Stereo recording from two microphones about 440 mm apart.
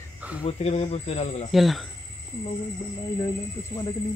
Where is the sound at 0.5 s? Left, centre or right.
Centre.